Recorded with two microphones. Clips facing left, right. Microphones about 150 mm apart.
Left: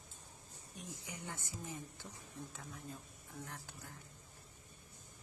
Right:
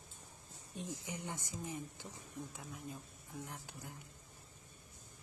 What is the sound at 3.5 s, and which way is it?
Speech, 20° right (ahead or behind).